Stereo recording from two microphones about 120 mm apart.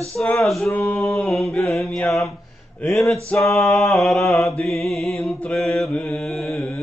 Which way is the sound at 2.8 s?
5° left (ahead or behind).